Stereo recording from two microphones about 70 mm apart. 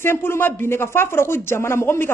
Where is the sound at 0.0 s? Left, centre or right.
Left.